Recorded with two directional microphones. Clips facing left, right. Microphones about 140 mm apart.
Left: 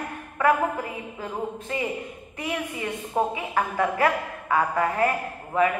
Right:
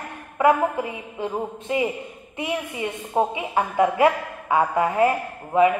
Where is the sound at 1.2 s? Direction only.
20° right (ahead or behind).